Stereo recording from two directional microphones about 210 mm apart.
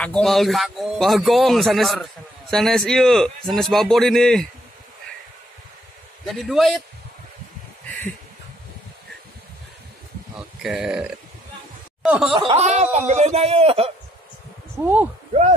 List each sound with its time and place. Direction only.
0.0 s a man's voice: 5° left (ahead or behind)
6.2 s a man's voice: centre (ahead or behind)
10.6 s a man's voice: 5° right (ahead or behind)
12.0 s snicker: 5° right (ahead or behind)
12.4 s a man's voice: 25° right (ahead or behind)
14.8 s speech: 10° right (ahead or behind)